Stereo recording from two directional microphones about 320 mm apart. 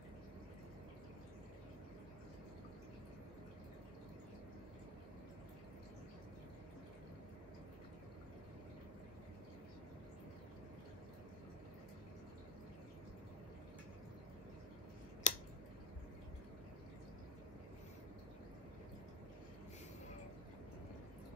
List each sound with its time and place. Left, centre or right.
15.3 s scissors: left